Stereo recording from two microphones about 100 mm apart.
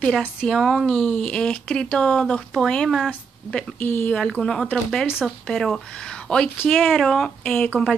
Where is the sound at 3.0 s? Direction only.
15° left (ahead or behind).